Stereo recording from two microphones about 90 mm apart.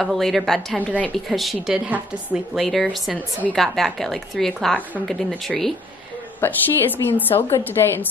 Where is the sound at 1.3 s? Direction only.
Centre (ahead or behind).